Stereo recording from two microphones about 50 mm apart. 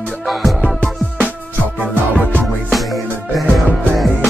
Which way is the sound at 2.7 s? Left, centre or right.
Centre.